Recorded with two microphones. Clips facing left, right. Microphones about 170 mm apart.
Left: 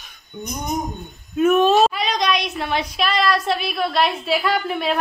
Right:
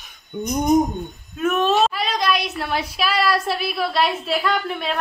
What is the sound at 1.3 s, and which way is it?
A woman's voice, centre (ahead or behind).